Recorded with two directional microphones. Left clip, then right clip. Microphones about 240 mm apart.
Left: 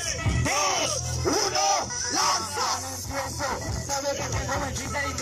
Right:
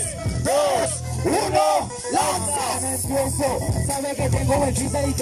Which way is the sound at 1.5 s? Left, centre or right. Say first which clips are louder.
Right 5 dB; right.